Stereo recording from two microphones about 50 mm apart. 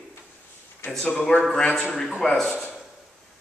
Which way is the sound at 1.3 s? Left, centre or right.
Left.